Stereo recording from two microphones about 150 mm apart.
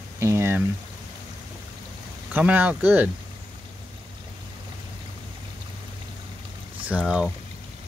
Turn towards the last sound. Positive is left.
turn(degrees=-5)  # may be behind; listen again after turning